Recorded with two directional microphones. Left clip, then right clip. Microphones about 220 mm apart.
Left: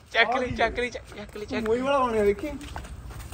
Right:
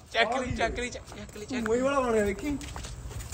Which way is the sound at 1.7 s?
25° left (ahead or behind).